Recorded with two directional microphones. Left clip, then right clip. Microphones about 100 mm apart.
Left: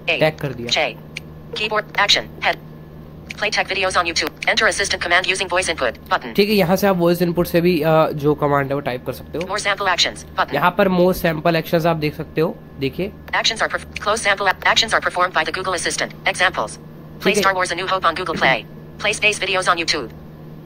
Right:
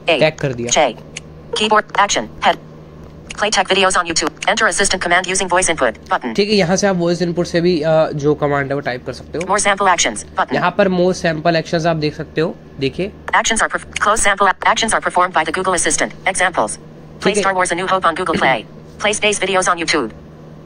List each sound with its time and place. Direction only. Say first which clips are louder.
0.2 s speech: right 4 dB; 20° right (ahead or behind)
0.7 s speech: right 5 dB; 15° left (ahead or behind)
6.3 s speech: right 1 dB; centre (ahead or behind)
6.7 s speech: right 1 dB; 15° left (ahead or behind)
7.2 s a woman's voice: right 1 dB; 30° left (ahead or behind)
10.5 s speech: right 1 dB; centre (ahead or behind)
10.9 s a woman's voice: right 1 dB; 30° left (ahead or behind)
11.2 s a woman's voice: right 2 dB; 5° left (ahead or behind)